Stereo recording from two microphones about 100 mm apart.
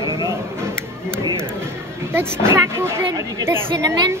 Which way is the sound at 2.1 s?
25° right (ahead or behind).